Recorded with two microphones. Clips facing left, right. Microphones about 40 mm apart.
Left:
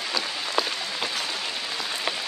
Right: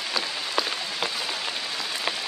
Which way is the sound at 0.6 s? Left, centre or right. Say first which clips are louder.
Left 1 dB; centre.